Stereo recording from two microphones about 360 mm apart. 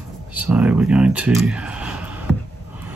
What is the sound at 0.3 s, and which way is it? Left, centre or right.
Speech, centre.